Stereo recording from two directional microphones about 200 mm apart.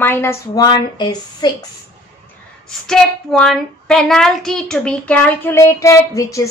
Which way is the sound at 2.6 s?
5° left (ahead or behind).